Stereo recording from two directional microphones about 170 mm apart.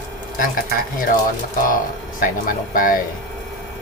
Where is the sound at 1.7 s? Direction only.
55° left (ahead or behind).